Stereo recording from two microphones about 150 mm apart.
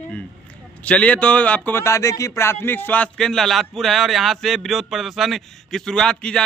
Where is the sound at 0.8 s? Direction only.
10° left (ahead or behind).